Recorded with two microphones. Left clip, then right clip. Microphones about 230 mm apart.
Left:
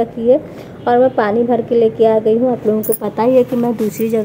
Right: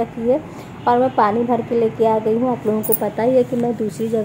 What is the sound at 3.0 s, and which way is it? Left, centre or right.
Speech, centre.